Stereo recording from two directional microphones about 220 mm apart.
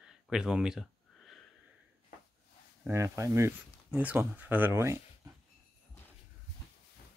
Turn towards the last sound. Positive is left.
turn(degrees=-10)  # may be behind; listen again after turning